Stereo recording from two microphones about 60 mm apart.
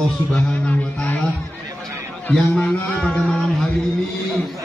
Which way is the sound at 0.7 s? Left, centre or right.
Left.